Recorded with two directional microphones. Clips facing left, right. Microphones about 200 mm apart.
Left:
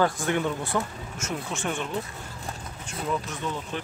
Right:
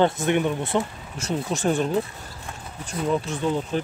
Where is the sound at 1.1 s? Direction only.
35° right (ahead or behind).